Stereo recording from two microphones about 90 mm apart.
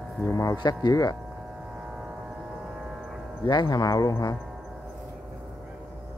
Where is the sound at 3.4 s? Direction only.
55° left (ahead or behind).